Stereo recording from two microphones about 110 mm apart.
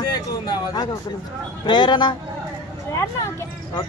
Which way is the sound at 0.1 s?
35° left (ahead or behind).